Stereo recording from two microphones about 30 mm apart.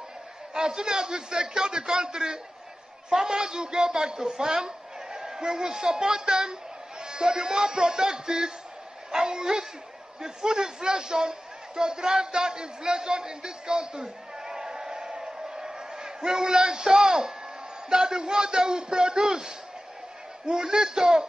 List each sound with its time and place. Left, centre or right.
0.6 s a man's voice: right